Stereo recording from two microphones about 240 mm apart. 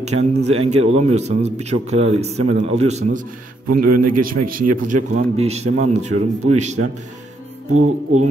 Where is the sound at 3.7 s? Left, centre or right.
Right.